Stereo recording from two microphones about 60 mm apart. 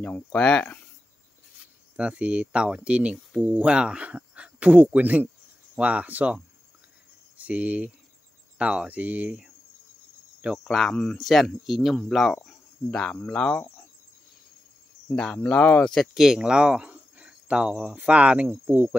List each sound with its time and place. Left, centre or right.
0.0 s speech: left
2.0 s speech: centre
7.3 s speech: right
10.7 s speech: centre
12.4 s speech: centre
15.0 s speech: left
15.8 s speech: centre
16.2 s speech: centre
16.9 s cricket: centre
17.9 s speech: centre